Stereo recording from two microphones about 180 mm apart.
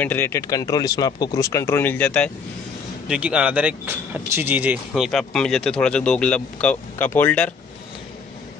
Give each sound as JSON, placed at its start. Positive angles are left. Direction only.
{"t": 0.0, "sound": "speech", "side_deg": 10}
{"t": 3.1, "sound": "speech", "side_deg": -5}